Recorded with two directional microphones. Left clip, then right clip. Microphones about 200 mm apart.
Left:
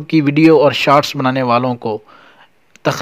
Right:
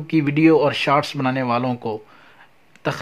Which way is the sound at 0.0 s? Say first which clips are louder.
Left 6 dB; 30° left (ahead or behind).